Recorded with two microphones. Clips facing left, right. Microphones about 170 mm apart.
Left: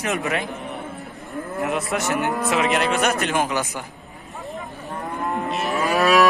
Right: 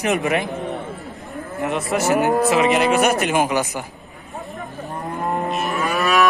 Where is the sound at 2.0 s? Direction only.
40° right (ahead or behind).